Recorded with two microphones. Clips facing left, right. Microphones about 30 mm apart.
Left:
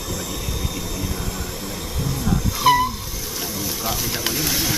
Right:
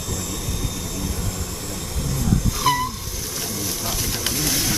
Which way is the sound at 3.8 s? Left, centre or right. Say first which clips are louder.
Left 3 dB; centre.